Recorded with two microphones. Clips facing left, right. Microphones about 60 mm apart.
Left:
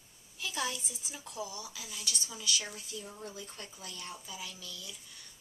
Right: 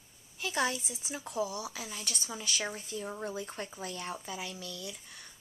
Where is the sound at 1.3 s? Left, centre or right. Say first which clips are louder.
Right 7 dB; right.